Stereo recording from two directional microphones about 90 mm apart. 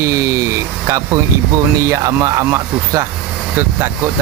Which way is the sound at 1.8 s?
35° right (ahead or behind).